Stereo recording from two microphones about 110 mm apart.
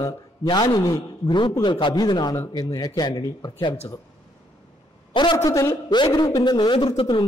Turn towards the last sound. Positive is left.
turn(degrees=45)  # may be behind; listen again after turning